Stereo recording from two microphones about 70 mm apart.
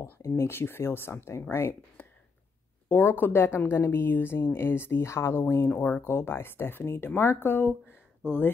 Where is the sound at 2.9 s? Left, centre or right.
Left.